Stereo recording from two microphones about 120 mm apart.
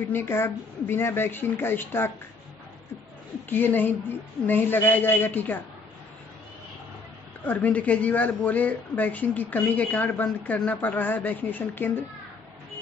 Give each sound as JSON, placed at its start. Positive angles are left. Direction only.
{"t": 0.1, "sound": "speech", "side_deg": 20}
{"t": 3.4, "sound": "a woman's voice", "side_deg": 15}
{"t": 7.4, "sound": "a woman's voice", "side_deg": 10}